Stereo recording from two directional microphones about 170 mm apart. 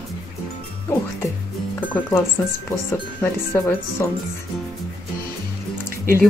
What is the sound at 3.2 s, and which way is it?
Speech, 10° left (ahead or behind).